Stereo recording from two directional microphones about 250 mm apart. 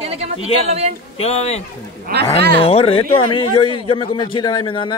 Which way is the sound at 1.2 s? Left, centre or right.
Left.